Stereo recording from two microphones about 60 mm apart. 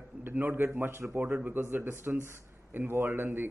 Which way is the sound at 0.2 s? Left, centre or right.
Right.